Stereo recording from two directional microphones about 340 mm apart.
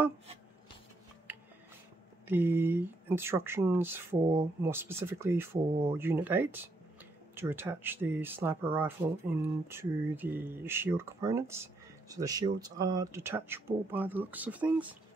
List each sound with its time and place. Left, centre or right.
1.3 s music: centre
2.2 s speech: centre